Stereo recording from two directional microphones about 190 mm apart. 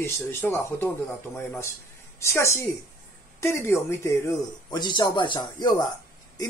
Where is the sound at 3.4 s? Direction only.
15° left (ahead or behind).